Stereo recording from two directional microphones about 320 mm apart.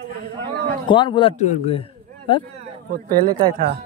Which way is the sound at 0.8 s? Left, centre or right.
Centre.